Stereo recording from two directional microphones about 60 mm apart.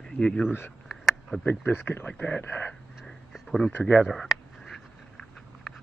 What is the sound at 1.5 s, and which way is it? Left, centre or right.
Speech, left.